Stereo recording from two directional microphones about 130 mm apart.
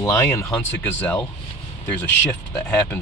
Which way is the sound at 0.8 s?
15° left (ahead or behind).